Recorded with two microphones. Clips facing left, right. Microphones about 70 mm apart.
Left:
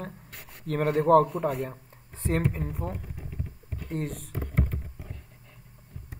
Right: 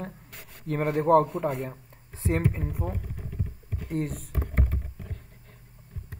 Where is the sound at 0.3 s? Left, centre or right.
Left.